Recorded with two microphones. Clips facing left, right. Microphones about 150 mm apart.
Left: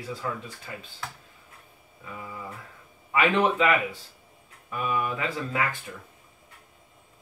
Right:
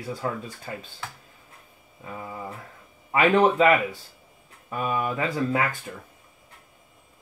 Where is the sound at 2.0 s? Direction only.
35° right (ahead or behind).